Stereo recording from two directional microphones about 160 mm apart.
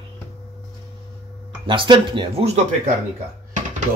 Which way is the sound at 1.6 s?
30° right (ahead or behind).